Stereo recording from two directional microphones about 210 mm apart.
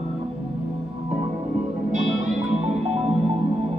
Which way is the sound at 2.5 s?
30° right (ahead or behind).